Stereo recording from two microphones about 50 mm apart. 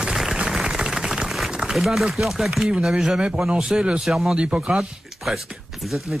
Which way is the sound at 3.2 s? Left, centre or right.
Right.